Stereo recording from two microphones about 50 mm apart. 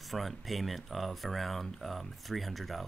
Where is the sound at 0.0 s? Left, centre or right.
Centre.